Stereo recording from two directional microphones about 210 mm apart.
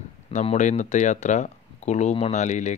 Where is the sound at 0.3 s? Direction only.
35° left (ahead or behind).